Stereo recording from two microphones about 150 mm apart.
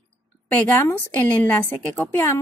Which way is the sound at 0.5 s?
15° left (ahead or behind).